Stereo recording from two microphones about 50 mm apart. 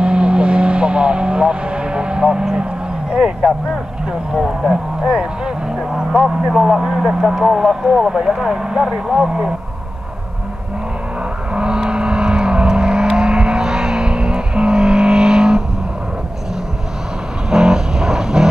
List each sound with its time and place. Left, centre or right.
0.0 s vehicle: right
3.1 s a sound: centre
4.3 s speech: centre
5.0 s speech: centre
6.1 s speech: centre
11.5 s vehicle: centre
17.5 s vehicle: centre